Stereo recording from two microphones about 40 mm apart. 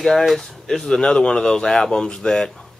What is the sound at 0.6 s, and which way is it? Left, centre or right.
Speech, centre.